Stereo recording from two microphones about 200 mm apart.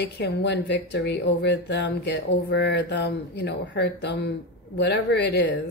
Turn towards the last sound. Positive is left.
turn(degrees=55)  # may be behind; listen again after turning